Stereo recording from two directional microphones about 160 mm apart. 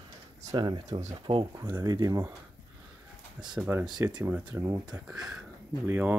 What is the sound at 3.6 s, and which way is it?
Speech, 5° right (ahead or behind).